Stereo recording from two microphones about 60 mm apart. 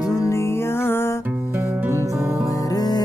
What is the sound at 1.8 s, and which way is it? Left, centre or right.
Music, right.